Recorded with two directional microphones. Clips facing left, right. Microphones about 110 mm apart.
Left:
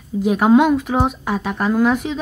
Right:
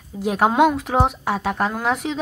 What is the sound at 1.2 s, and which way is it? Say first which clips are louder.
Speech: even; 75° right (ahead or behind).